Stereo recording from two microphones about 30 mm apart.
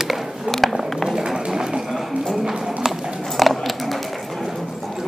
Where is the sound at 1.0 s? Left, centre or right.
Right.